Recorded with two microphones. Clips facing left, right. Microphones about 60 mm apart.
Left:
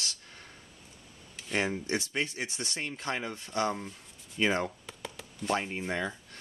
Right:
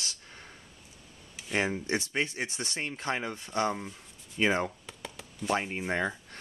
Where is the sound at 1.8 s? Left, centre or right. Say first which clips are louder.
Right 1 dB; right.